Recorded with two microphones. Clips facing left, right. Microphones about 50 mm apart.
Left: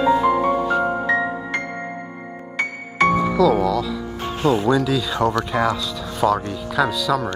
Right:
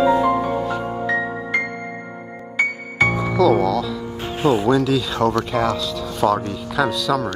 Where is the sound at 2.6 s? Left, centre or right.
Centre.